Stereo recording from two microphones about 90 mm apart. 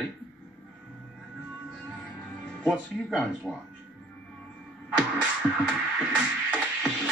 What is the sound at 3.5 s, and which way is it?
Speech, centre (ahead or behind).